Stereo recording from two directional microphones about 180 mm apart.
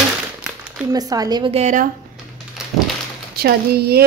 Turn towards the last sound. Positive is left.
turn(degrees=-60)  # may be behind; listen again after turning